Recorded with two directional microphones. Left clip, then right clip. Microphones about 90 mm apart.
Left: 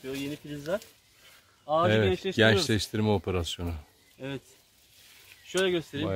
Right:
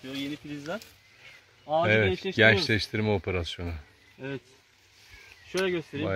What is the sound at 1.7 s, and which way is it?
Speech, 40° left (ahead or behind).